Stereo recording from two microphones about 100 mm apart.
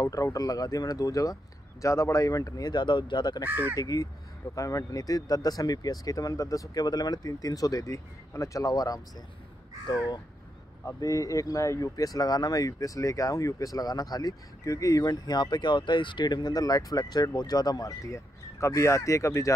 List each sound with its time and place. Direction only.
0.0 s speech: 35° left (ahead or behind)
3.4 s speech: 20° right (ahead or behind)
3.7 s speech: 40° left (ahead or behind)
10.9 s speech: 35° left (ahead or behind)